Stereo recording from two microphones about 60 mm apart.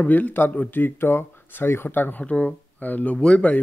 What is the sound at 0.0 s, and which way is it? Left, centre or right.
Speech, left.